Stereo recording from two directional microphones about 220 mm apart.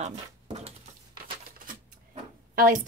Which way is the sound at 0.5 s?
30° right (ahead or behind).